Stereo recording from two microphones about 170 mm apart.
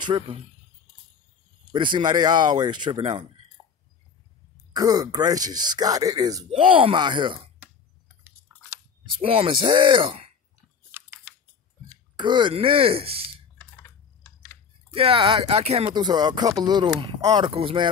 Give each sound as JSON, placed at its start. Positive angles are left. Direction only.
{"t": 0.0, "sound": "speech", "side_deg": -25}
{"t": 1.7, "sound": "speech", "side_deg": -30}
{"t": 4.7, "sound": "speech", "side_deg": -20}
{"t": 6.5, "sound": "speech", "side_deg": -30}
{"t": 8.5, "sound": "a sound", "side_deg": -10}
{"t": 9.2, "sound": "speech", "side_deg": -35}
{"t": 10.9, "sound": "chewing", "side_deg": -15}
{"t": 12.2, "sound": "speech", "side_deg": -30}
{"t": 13.6, "sound": "typing", "side_deg": 10}
{"t": 15.0, "sound": "speech", "side_deg": -30}
{"t": 15.9, "sound": "speech", "side_deg": -25}